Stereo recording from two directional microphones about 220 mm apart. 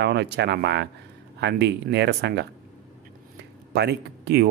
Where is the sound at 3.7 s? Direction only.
50° right (ahead or behind).